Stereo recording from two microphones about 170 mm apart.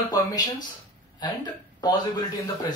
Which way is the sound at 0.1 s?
20° left (ahead or behind).